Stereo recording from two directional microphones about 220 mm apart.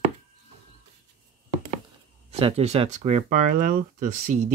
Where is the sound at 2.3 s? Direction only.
30° right (ahead or behind).